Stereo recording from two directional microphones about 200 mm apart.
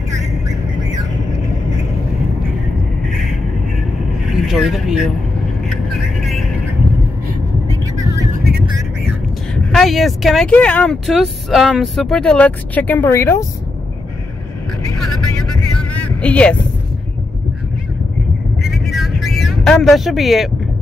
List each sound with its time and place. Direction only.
3.1 s a sound: centre (ahead or behind)
4.3 s speech: centre (ahead or behind)
5.7 s a sound: centre (ahead or behind)
9.8 s speech: centre (ahead or behind)
15.8 s music: 5° left (ahead or behind)
18.6 s vehicle: centre (ahead or behind)